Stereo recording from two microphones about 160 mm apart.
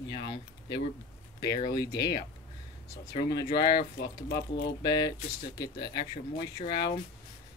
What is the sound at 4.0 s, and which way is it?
Speech, 85° left.